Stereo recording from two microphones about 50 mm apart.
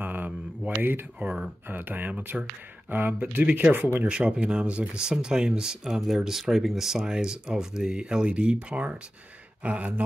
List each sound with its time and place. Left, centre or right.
0.0 s a sound: right
0.8 s speech: right
4.1 s speech: right